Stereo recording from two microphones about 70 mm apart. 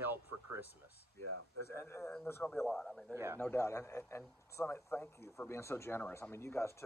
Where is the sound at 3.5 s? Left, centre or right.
Left.